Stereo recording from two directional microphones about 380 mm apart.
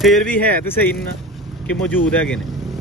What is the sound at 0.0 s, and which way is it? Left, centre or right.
Speech, centre.